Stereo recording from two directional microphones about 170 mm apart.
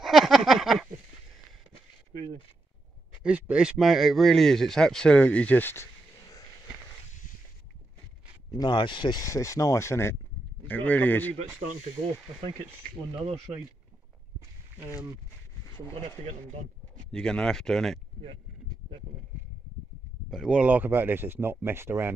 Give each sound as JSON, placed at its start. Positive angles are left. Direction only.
{"t": 0.0, "sound": "a sound", "side_deg": 0}
{"t": 3.3, "sound": "speech", "side_deg": -5}
{"t": 8.5, "sound": "speech", "side_deg": 25}
{"t": 12.4, "sound": "speech", "side_deg": -35}
{"t": 15.6, "sound": "a sound", "side_deg": 15}
{"t": 17.1, "sound": "speech", "side_deg": 5}
{"t": 20.2, "sound": "speech", "side_deg": -5}